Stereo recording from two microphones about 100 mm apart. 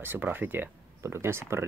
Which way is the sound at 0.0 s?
20° right (ahead or behind).